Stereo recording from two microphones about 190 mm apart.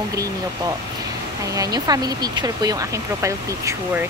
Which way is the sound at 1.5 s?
20° right (ahead or behind).